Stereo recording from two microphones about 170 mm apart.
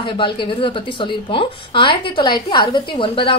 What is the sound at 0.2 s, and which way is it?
A woman's voice, 30° left (ahead or behind).